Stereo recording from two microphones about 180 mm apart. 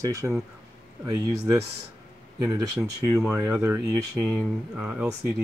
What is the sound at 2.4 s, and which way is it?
Speech, 15° right (ahead or behind).